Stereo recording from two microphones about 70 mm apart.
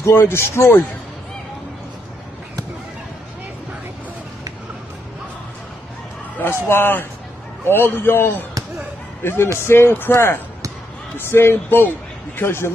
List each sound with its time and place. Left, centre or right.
0.0 s a man's voice: left
6.3 s a man's voice: left